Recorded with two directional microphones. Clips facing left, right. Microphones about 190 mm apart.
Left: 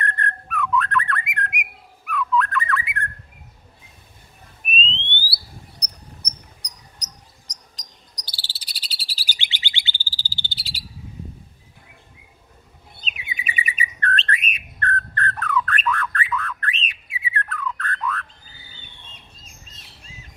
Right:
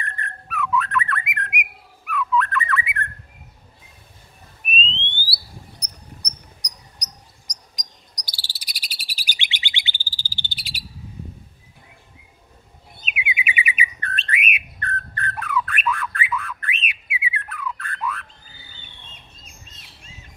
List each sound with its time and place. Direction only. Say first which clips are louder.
0.0 s whistling: left 6 dB; centre (ahead or behind)
4.7 s whistling: even; centre (ahead or behind)
7.7 s cricket: right 1 dB; 10° right (ahead or behind)
8.3 s bird vocalization: right 1 dB; 10° right (ahead or behind)
13.1 s bird: right 4 dB; 10° right (ahead or behind)